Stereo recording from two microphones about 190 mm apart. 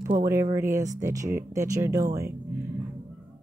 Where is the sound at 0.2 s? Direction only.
15° right (ahead or behind).